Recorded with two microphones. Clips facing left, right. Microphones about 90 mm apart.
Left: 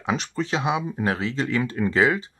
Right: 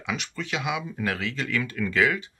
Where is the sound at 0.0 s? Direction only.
35° left (ahead or behind).